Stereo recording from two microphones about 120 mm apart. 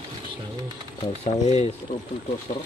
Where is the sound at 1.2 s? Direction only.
65° left (ahead or behind).